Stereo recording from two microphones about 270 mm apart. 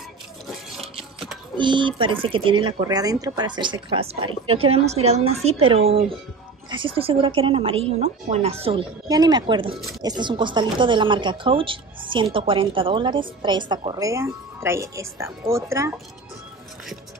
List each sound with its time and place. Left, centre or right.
0.7 s music: centre
1.6 s speech: centre